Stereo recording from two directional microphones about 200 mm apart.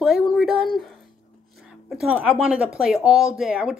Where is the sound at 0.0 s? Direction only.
Centre (ahead or behind).